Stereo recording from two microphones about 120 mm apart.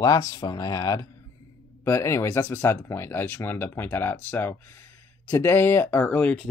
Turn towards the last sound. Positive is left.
turn(degrees=10)  # may be behind; listen again after turning